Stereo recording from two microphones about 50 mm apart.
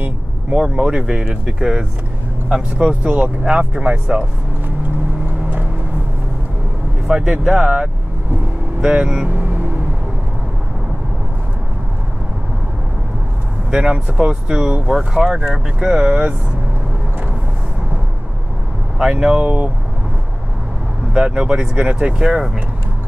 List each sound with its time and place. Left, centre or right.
0.5 s speech: centre
7.1 s speech: centre
8.8 s speech: centre
13.7 s speech: centre
14.9 s speech: centre
15.8 s speech: right
18.9 s speech: centre
19.4 s speech: right
21.1 s speech: centre